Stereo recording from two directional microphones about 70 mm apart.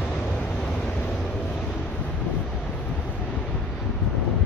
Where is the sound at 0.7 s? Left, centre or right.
Centre; by 3.5 s left.